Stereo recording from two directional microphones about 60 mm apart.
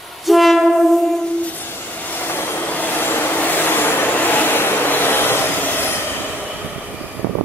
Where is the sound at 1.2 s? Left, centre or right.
Left.